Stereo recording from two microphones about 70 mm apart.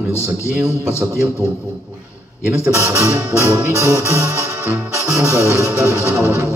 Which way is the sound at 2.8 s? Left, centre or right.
Right.